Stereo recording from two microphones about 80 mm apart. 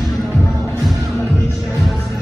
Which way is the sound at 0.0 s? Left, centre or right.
Centre.